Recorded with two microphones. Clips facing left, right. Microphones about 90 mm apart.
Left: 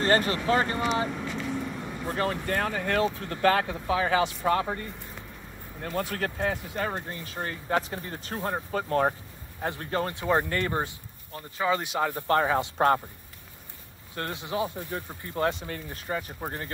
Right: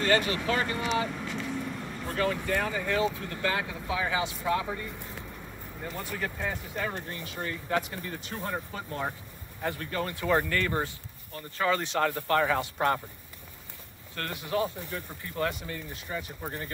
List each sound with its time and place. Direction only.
0.0 s speech: 40° left (ahead or behind)
1.1 s vehicle: 10° left (ahead or behind)
2.0 s speech: 35° left (ahead or behind)
2.4 s speech: 50° left (ahead or behind)
5.8 s speech: 90° left; by 6.8 s 65° left (ahead or behind)
6.8 s speech: 35° left (ahead or behind)
9.7 s speech: 35° left (ahead or behind)
10.1 s speech: 20° left (ahead or behind)
11.5 s speech: 10° left (ahead or behind)
12.3 s speech: 30° left (ahead or behind)
14.1 s speech: 20° left (ahead or behind)
15.0 s speech: 30° left (ahead or behind)
15.7 s speech: 50° left (ahead or behind)